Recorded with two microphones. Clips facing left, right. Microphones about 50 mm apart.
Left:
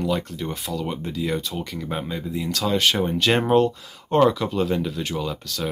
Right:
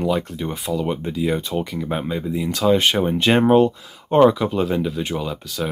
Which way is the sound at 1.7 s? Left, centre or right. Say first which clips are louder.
Right 4 dB; centre.